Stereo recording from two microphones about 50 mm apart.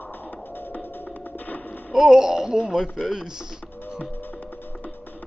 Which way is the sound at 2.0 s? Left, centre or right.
Centre.